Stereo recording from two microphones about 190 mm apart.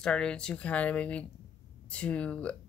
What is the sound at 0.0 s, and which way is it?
Speech, 5° left (ahead or behind).